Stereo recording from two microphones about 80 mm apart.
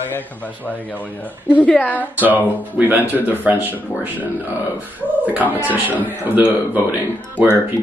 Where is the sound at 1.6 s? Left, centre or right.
Centre.